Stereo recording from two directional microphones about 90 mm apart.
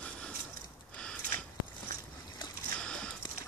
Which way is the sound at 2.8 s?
10° left (ahead or behind).